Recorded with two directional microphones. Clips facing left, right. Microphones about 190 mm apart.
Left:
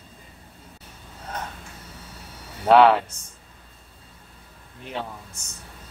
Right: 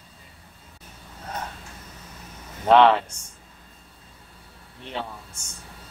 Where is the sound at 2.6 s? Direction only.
5° left (ahead or behind).